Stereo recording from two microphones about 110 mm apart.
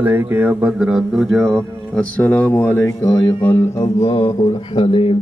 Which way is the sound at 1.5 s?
5° left (ahead or behind).